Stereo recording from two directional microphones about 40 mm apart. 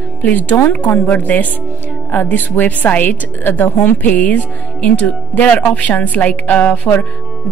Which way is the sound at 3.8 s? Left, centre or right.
Left.